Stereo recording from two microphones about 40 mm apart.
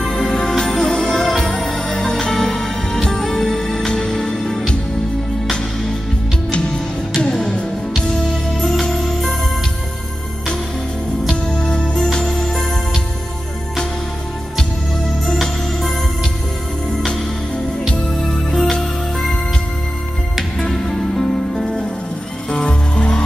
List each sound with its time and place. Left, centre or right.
0.0 s music: centre
7.3 s music: centre
11.5 s music: centre
12.3 s music: centre
17.8 s music: centre
20.5 s music: centre
22.5 s music: left